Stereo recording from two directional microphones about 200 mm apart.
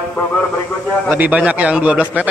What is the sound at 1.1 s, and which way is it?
Speech, 10° right (ahead or behind).